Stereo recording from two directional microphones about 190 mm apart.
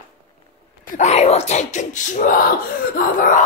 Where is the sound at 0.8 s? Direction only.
40° left (ahead or behind).